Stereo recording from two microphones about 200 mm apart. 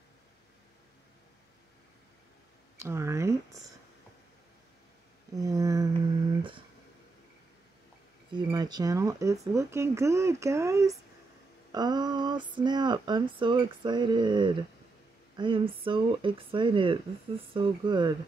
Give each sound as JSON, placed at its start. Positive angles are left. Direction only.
{"t": 2.8, "sound": "speech", "side_deg": -15}
{"t": 5.3, "sound": "a sound", "side_deg": -20}
{"t": 8.3, "sound": "speech", "side_deg": -20}